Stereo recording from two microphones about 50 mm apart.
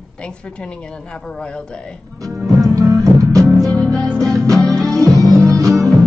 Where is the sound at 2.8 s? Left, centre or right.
Right.